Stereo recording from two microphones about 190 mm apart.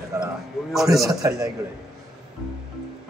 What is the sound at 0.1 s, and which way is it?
Speech, 15° right (ahead or behind).